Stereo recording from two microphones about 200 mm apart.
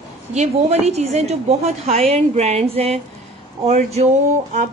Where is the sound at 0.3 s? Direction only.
35° right (ahead or behind).